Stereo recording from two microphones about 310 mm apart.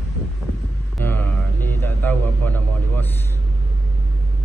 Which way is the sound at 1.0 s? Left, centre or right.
Centre.